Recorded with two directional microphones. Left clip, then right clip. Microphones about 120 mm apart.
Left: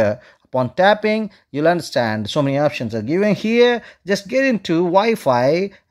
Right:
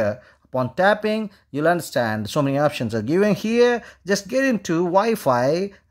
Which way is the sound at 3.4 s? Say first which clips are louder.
Left 3 dB; 10° left (ahead or behind).